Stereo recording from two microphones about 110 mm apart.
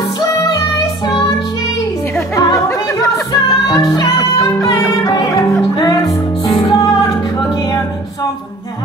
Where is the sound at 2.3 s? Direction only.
30° left (ahead or behind).